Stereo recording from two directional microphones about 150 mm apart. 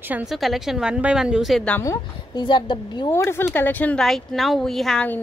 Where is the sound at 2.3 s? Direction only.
30° left (ahead or behind).